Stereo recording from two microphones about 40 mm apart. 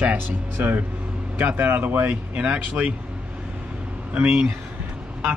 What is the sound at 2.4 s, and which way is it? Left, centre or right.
Speech, right.